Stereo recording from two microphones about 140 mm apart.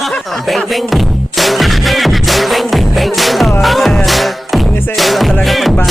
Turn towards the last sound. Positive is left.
turn(degrees=0)  # may be behind; listen again after turning